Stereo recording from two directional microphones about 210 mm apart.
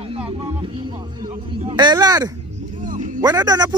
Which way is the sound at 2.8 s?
40° right (ahead or behind).